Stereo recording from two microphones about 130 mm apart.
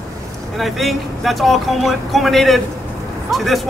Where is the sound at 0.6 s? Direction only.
Centre (ahead or behind).